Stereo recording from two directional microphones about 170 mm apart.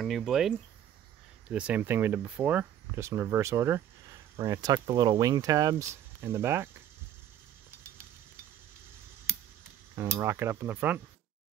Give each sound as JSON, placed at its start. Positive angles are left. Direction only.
{"t": 0.0, "sound": "speech", "side_deg": 0}
{"t": 9.9, "sound": "speech", "side_deg": -15}